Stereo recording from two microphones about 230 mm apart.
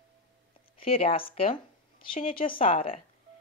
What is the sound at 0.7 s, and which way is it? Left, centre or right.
Speech, left.